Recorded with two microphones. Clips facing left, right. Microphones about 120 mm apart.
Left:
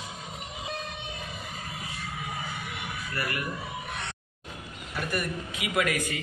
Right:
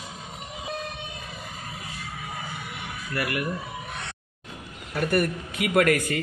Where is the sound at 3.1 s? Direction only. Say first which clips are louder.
Right 5 dB; 65° right (ahead or behind).